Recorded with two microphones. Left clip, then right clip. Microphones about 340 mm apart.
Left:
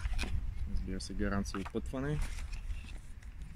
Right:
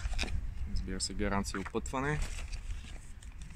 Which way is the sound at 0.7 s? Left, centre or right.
Right.